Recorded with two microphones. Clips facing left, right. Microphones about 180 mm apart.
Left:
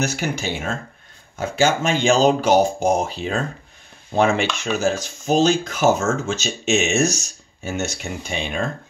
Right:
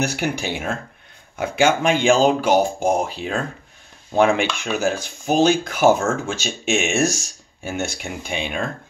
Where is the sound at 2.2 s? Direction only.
45° left (ahead or behind).